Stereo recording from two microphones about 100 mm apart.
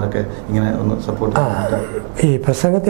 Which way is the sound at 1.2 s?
20° right (ahead or behind).